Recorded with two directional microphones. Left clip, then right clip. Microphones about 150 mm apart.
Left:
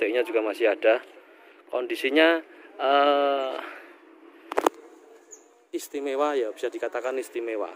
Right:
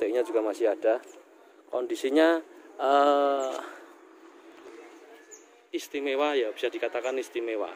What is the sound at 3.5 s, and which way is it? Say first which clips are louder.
Speech: left 2 dB; 10° right (ahead or behind).